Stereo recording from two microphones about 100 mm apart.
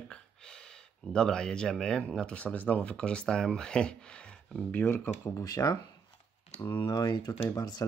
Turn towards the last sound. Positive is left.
turn(degrees=40)  # may be behind; listen again after turning